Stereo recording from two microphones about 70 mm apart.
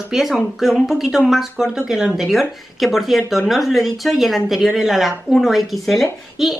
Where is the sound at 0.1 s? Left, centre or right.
Centre.